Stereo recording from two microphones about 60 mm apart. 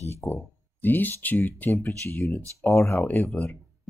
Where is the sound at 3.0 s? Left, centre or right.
Left.